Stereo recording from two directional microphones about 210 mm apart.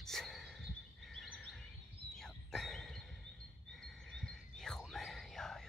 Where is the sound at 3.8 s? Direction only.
5° left (ahead or behind).